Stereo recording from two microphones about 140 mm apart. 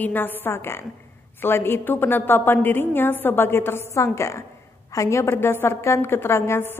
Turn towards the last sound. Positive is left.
turn(degrees=15)  # may be behind; listen again after turning